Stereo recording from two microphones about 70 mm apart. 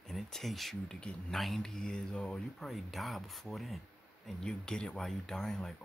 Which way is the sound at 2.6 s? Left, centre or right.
Centre.